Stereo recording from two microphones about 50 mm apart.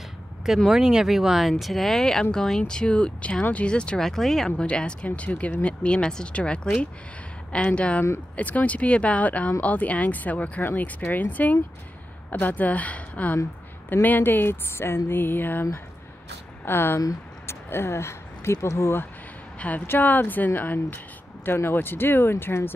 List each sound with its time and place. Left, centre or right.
0.7 s speech: centre
4.0 s speech: centre
4.5 s speech: left
10.6 s speech: left
14.0 s speech: left
16.6 s speech: left
19.9 s speech: left